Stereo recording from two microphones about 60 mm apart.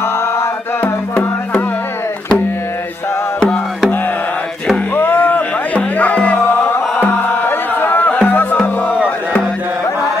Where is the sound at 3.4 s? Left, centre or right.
Centre.